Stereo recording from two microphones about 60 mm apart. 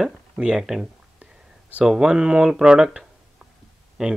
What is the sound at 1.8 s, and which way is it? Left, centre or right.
Speech, centre.